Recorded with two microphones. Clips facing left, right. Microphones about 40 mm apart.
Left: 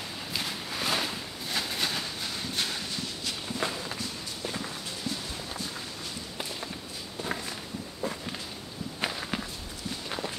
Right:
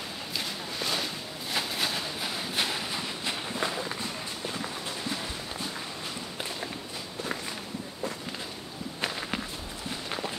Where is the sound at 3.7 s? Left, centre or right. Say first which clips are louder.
Right 2 dB; centre.